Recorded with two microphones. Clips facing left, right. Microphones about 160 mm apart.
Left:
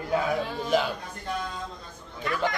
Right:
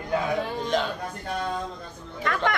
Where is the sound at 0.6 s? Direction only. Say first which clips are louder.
Left 3 dB; 5° left (ahead or behind).